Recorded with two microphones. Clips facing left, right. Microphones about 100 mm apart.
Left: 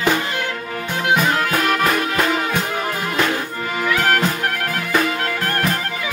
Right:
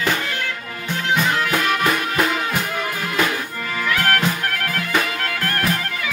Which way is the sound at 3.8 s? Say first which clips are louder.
Left 2 dB; 15° left (ahead or behind).